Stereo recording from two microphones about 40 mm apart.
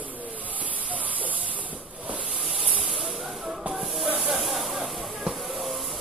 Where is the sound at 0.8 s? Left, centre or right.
Right.